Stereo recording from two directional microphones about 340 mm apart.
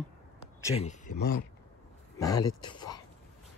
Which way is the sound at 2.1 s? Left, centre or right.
Centre.